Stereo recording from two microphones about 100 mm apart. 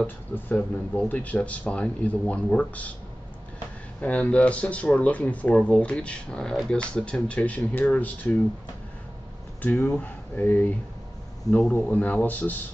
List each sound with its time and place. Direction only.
0.0 s speech: 20° left (ahead or behind)
4.0 s speech: 15° left (ahead or behind)
9.6 s speech: 15° left (ahead or behind)
11.9 s speech: 15° left (ahead or behind)